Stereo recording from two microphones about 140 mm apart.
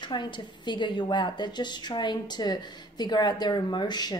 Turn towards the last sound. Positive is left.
turn(degrees=30)  # may be behind; listen again after turning